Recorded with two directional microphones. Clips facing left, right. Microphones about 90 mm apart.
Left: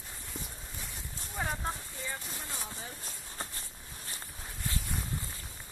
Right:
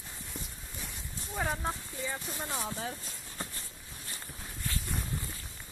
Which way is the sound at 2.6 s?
90° right.